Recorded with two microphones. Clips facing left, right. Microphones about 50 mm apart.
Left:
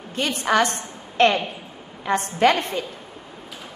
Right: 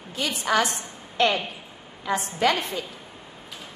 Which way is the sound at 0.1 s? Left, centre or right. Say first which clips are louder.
Left 3 dB; left.